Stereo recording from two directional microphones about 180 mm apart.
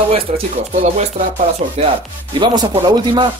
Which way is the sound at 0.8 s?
40° right (ahead or behind).